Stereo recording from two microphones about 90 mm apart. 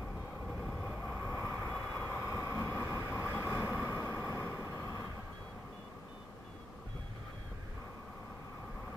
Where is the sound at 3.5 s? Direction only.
20° right (ahead or behind).